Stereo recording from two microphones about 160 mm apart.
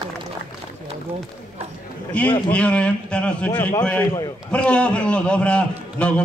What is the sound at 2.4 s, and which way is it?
A man's voice, 5° left (ahead or behind).